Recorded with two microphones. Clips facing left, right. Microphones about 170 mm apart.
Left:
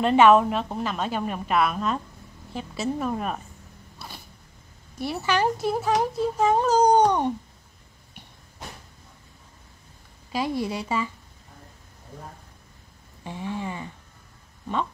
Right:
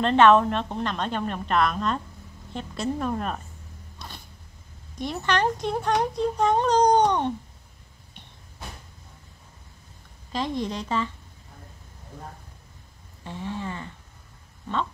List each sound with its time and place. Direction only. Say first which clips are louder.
0.0 s a woman's voice: left 1 dB; 10° left (ahead or behind)
4.0 s zipper: left 1 dB; 5° left (ahead or behind)
4.9 s speech: left 1 dB; 5° left (ahead or behind)
10.3 s a woman's voice: left 1 dB; 10° left (ahead or behind)
13.2 s a woman's voice: left 1 dB; 15° left (ahead or behind)